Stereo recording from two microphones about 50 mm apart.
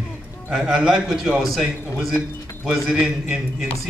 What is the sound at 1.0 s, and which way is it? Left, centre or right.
Speech, centre.